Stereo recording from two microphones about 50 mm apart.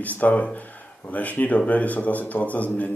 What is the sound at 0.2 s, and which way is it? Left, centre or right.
Speech, left.